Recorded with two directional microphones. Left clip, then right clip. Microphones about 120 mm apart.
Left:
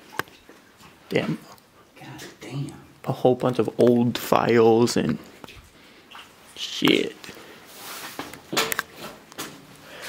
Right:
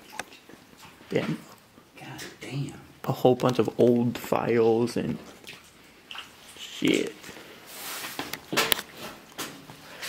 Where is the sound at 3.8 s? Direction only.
30° left (ahead or behind).